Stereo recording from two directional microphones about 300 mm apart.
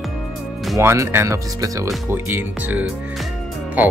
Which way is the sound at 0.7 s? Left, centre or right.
Centre.